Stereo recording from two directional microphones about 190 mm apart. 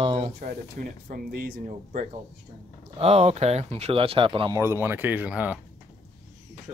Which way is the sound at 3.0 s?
35° right (ahead or behind).